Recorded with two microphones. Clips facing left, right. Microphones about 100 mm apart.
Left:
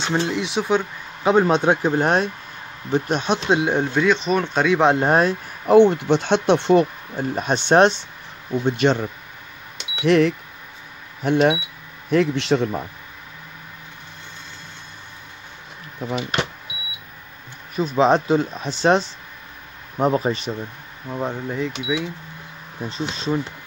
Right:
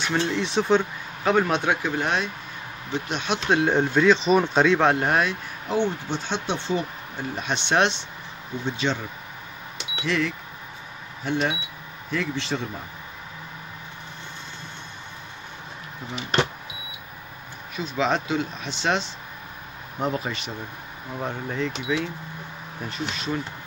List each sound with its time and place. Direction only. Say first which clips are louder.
0.2 s speech: left 1 dB; 10° left (ahead or behind)
1.2 s speech: left 5 dB; 25° left (ahead or behind)
3.4 s speech: even; 15° left (ahead or behind)
3.8 s speech: even; centre (ahead or behind)
4.7 s speech: left 3 dB; 20° left (ahead or behind)
5.0 s speech: left 5 dB; 35° left (ahead or behind)
5.7 s speech: left 12 dB; 65° left (ahead or behind)
7.2 s speech: left 7 dB; 45° left (ahead or behind)
8.6 s a man's voice: left 8 dB; 55° left (ahead or behind)
10.0 s a man's voice: left 10 dB; 60° left (ahead or behind)
17.7 s speech: left 8 dB; 40° left (ahead or behind)
21.1 s speech: left 4 dB; 15° left (ahead or behind)
22.8 s speech: left 4 dB; 30° left (ahead or behind)